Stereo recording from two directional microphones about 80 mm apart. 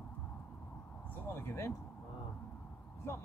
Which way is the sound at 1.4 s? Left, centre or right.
Left.